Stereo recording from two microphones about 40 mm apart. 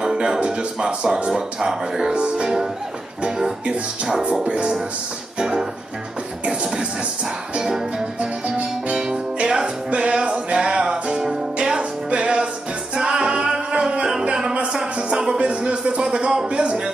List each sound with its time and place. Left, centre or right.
0.0 s speech: centre
2.1 s speech: right
2.4 s music: centre
3.6 s speech: right
5.4 s music: centre
6.4 s speech: right
7.5 s music: centre
8.2 s music: right
9.0 s music: right
14.7 s a sound: centre